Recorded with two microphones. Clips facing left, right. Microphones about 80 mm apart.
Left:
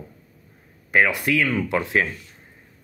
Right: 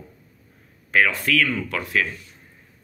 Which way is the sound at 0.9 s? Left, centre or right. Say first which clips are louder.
Left 1 dB; centre.